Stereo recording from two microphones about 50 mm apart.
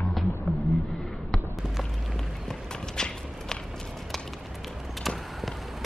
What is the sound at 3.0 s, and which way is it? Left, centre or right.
Clip-clop, centre.